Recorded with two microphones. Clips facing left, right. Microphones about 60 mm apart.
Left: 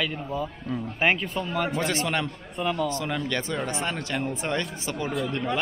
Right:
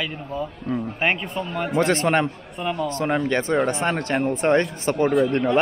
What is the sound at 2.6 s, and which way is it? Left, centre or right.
Speech, centre.